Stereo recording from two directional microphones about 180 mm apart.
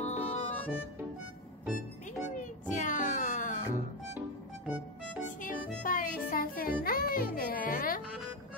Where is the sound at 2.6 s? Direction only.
45° left (ahead or behind).